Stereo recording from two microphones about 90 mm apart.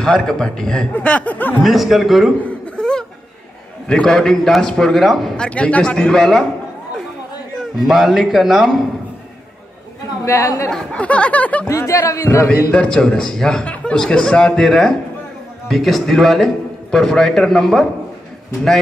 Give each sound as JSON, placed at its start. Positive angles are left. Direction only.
{"t": 0.0, "sound": "a man's voice", "side_deg": 10}
{"t": 1.6, "sound": "a man's voice", "side_deg": 0}
{"t": 2.4, "sound": "laughter", "side_deg": 10}
{"t": 3.8, "sound": "a man's voice", "side_deg": 10}
{"t": 7.8, "sound": "a man's voice", "side_deg": 0}
{"t": 10.2, "sound": "speech", "side_deg": 35}
{"t": 10.7, "sound": "a man's voice", "side_deg": 10}
{"t": 11.7, "sound": "speech", "side_deg": 35}
{"t": 12.7, "sound": "a man's voice", "side_deg": 10}